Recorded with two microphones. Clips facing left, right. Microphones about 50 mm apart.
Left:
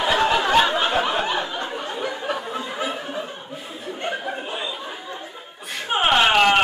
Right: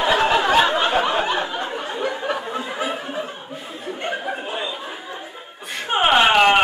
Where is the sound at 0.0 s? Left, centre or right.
Centre.